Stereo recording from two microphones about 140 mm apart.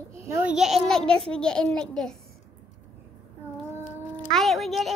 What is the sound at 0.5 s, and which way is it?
A child's voice, centre (ahead or behind).